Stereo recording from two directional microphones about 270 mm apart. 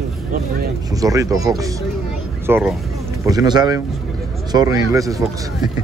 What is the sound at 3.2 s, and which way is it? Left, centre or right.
Speech, centre.